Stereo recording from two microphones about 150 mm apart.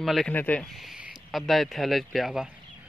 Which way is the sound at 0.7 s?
5° right (ahead or behind).